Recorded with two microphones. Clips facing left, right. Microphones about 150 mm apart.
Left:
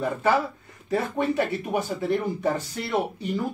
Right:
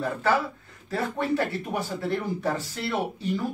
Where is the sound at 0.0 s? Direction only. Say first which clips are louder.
Left 2 dB; 20° left (ahead or behind).